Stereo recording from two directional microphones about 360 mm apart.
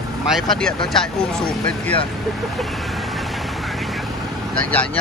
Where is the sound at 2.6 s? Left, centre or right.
Centre.